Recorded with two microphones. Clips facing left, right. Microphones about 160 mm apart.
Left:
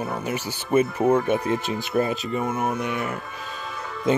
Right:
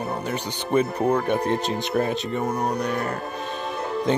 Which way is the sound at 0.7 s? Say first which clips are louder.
Left 1 dB; 5° left (ahead or behind).